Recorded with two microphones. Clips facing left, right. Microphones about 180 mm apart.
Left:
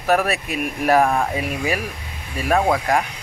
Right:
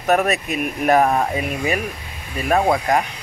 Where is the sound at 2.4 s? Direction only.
10° right (ahead or behind).